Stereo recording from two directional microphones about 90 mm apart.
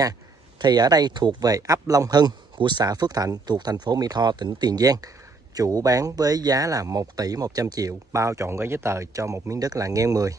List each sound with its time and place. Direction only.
0.6 s speech: 50° right (ahead or behind)